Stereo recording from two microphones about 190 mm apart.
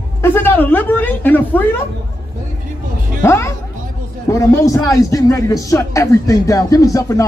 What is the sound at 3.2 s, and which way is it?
A man's voice, 15° left (ahead or behind).